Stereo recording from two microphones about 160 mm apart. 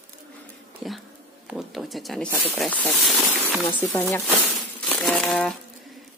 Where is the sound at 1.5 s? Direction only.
Centre (ahead or behind).